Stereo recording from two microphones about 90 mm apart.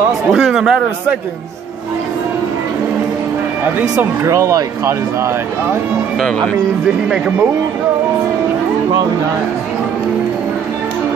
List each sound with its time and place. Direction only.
0.3 s speech: 5° right (ahead or behind)
4.2 s speech: 35° right (ahead or behind)
7.1 s speech: 15° right (ahead or behind)